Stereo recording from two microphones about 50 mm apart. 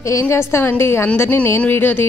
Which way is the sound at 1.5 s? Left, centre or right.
Left.